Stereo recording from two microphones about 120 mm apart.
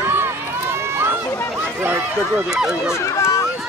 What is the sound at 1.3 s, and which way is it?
Chatter, 5° left (ahead or behind).